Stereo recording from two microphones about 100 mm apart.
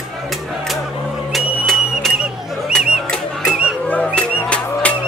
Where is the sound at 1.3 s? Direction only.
Centre (ahead or behind).